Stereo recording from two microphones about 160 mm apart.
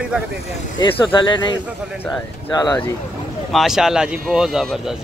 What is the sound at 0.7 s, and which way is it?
Speech, 30° left (ahead or behind).